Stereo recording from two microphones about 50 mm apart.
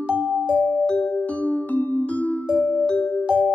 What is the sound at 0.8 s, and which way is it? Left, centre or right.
Music, centre.